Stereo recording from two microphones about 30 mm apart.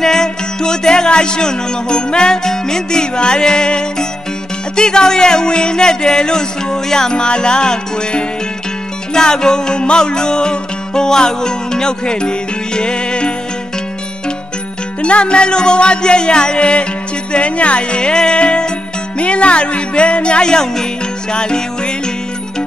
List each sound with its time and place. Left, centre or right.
0.0 s music: left
4.7 s speech: left
9.1 s music: left
15.0 s music: left